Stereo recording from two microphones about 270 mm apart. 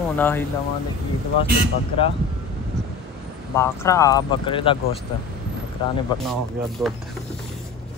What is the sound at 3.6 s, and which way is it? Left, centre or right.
Speech, centre.